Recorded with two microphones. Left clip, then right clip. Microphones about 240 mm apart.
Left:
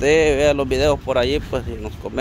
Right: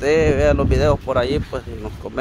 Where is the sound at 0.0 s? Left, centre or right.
Centre.